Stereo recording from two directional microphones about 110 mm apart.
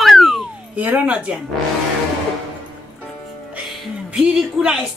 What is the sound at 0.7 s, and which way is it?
Speech, 15° right (ahead or behind).